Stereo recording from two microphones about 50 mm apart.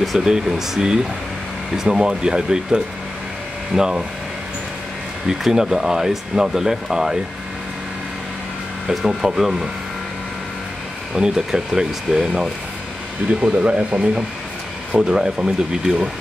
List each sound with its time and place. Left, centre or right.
0.2 s speech: centre
5.4 s speech: centre
8.8 s speech: centre
11.1 s speech: centre
13.3 s speech: right